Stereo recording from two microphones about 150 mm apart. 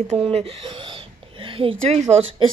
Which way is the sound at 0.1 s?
40° right (ahead or behind).